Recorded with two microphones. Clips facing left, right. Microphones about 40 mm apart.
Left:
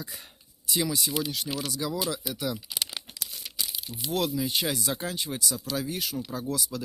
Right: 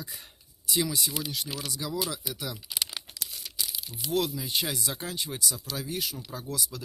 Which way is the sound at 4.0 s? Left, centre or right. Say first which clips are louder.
Left 1 dB; left.